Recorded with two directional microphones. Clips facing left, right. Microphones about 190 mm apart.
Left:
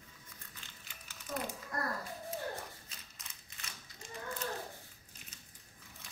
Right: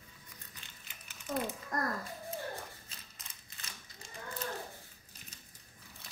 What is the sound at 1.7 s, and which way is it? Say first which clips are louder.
Speech: right 4 dB; 45° right (ahead or behind).